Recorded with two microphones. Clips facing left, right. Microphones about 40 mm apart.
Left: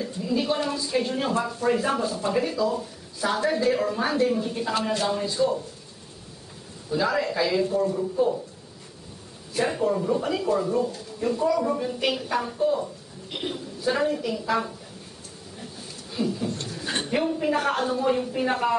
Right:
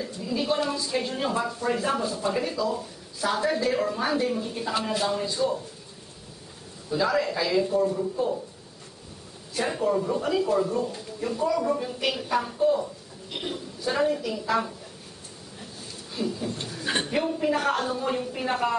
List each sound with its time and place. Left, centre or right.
0.0 s a woman's voice: centre
6.9 s a woman's voice: centre
9.6 s a woman's voice: centre
16.1 s speech: centre
16.6 s a sound: centre
17.1 s a woman's voice: centre